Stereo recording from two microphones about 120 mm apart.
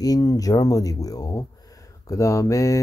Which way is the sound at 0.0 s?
30° left (ahead or behind).